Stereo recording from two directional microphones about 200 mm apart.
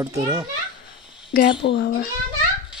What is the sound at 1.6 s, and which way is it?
Speech, 60° left (ahead or behind).